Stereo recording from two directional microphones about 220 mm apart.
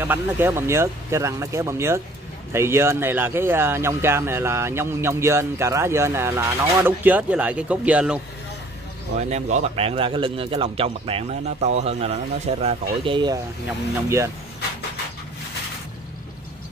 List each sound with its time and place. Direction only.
0.0 s speech: 10° right (ahead or behind)
9.3 s a man's voice: 30° right (ahead or behind); by 14.3 s 10° right (ahead or behind)